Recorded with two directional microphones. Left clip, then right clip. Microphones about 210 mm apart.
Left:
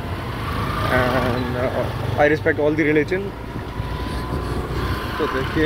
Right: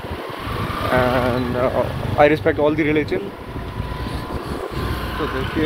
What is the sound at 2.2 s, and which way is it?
Speech, 25° right (ahead or behind).